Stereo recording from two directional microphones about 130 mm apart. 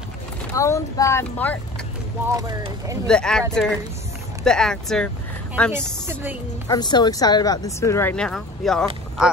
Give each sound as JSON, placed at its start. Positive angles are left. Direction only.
{"t": 0.6, "sound": "speech", "side_deg": 25}
{"t": 1.4, "sound": "speech", "side_deg": 10}
{"t": 2.2, "sound": "speech", "side_deg": -25}
{"t": 3.1, "sound": "speech", "side_deg": 5}
{"t": 4.5, "sound": "speech", "side_deg": 5}
{"t": 5.7, "sound": "a woman's voice", "side_deg": -20}
{"t": 6.7, "sound": "speech", "side_deg": 35}
{"t": 8.1, "sound": "speech", "side_deg": 5}